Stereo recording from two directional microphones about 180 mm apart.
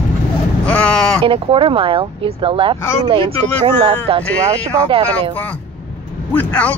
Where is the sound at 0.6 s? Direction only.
5° left (ahead or behind).